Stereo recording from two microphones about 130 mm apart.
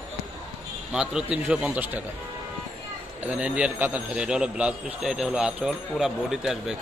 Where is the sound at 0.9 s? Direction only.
5° right (ahead or behind).